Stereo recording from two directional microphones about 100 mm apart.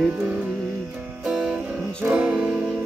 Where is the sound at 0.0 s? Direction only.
10° right (ahead or behind).